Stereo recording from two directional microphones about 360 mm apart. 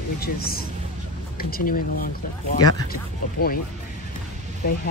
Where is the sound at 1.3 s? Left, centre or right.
Left.